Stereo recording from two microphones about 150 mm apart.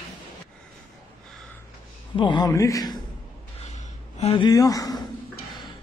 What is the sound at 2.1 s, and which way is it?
Speech, 30° left (ahead or behind).